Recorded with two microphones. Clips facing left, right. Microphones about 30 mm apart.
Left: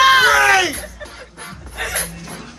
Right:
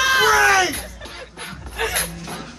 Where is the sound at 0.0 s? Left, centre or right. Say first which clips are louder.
Left 4 dB; left.